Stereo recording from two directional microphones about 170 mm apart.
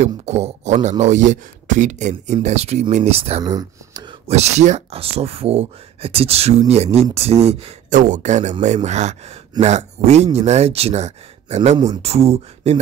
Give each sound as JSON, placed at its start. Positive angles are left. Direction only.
{"t": 0.0, "sound": "speech", "side_deg": -40}
{"t": 3.4, "sound": "speech", "side_deg": -20}
{"t": 4.3, "sound": "speech", "side_deg": -40}
{"t": 11.7, "sound": "speech", "side_deg": -25}
{"t": 12.0, "sound": "speech", "side_deg": -35}